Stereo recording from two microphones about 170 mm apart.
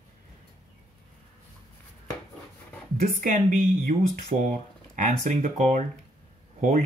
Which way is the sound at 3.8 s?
50° right (ahead or behind).